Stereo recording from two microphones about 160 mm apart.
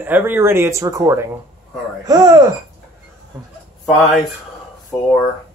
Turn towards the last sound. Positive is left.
turn(degrees=5)  # may be behind; listen again after turning